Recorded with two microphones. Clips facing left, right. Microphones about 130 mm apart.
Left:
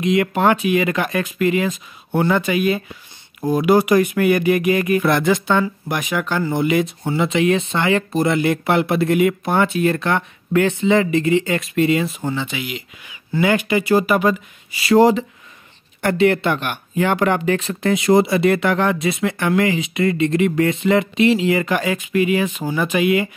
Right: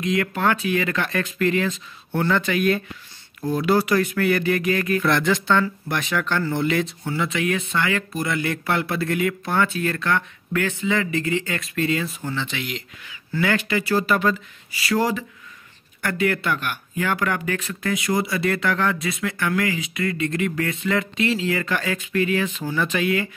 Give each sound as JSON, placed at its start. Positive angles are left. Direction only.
{"t": 0.0, "sound": "speech", "side_deg": 20}